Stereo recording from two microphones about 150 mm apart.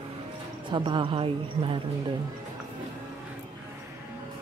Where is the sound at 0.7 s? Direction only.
35° right (ahead or behind).